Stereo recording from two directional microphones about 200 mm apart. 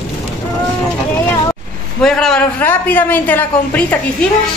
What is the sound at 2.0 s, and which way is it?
A man's voice, centre (ahead or behind).